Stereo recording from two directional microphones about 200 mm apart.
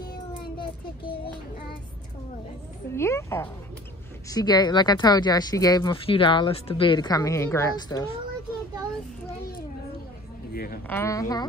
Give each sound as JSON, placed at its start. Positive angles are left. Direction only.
{"t": 0.0, "sound": "child singing", "side_deg": 20}
{"t": 3.0, "sound": "a woman's voice", "side_deg": 15}
{"t": 10.5, "sound": "speech", "side_deg": 45}
{"t": 10.9, "sound": "a woman's voice", "side_deg": 15}